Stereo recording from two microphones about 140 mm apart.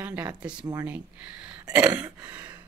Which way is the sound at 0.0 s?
10° right (ahead or behind).